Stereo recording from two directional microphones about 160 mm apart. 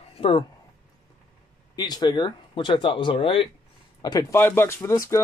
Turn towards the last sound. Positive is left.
turn(degrees=15)  # may be behind; listen again after turning